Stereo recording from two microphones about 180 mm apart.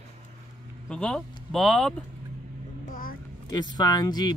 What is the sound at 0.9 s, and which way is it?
Speech, 5° left (ahead or behind).